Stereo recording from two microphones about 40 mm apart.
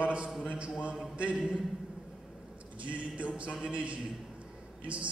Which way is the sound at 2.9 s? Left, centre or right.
Right.